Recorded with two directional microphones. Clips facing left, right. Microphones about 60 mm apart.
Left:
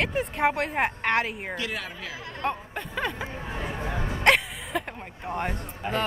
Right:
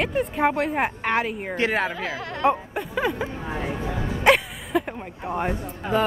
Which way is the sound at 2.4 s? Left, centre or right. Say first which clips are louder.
Right 8 dB; centre.